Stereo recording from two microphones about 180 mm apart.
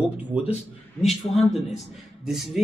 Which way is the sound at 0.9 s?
35° left (ahead or behind).